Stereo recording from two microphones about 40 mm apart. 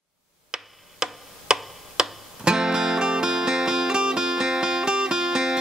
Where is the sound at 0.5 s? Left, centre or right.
Centre.